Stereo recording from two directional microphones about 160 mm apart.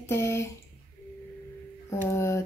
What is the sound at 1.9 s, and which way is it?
Speech, 15° left (ahead or behind).